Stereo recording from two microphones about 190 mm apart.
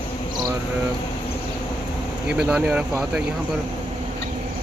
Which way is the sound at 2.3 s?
5° right (ahead or behind).